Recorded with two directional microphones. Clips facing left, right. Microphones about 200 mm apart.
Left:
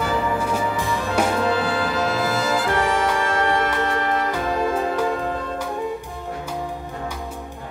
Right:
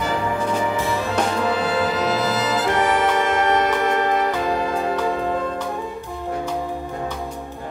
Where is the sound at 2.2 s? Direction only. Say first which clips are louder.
Right 1 dB; 20° right (ahead or behind).